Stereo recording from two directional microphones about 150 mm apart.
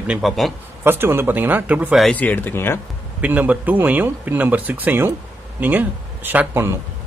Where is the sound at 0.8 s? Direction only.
15° right (ahead or behind).